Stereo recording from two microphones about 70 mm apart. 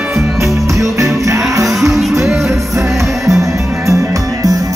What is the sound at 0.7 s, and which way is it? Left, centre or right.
Music, right.